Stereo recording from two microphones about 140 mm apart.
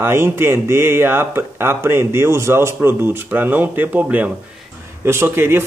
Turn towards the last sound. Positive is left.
turn(degrees=-15)  # may be behind; listen again after turning